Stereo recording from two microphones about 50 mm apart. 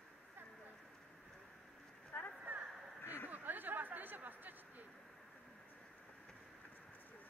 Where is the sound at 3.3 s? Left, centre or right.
Right.